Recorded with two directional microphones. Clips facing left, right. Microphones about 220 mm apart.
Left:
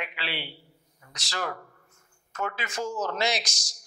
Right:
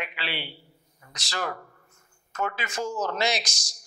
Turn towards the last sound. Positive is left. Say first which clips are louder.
# right 1 dB
turn(degrees=-10)  # may be behind; listen again after turning